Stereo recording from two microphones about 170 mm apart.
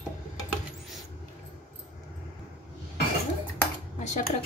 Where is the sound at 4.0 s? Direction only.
45° left (ahead or behind).